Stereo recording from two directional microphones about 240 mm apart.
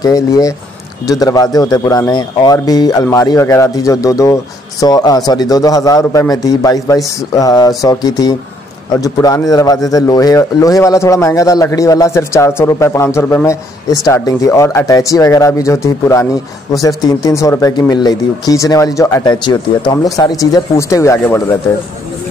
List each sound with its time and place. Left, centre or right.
0.0 s speech: centre